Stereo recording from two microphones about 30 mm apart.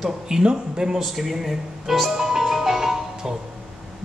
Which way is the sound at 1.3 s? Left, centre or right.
Centre.